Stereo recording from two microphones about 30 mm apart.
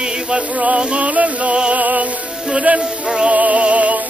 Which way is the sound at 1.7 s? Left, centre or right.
Right.